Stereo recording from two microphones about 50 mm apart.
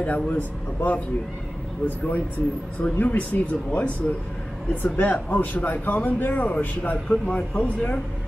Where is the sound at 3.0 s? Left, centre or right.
Left.